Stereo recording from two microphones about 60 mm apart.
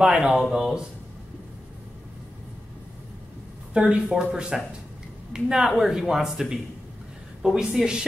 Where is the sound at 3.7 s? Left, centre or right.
Centre.